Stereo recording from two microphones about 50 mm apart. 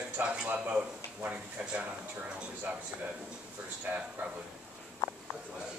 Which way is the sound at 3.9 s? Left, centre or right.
Right.